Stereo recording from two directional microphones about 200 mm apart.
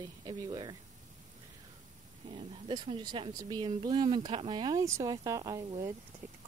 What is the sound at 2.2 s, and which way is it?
Speech, 25° right (ahead or behind).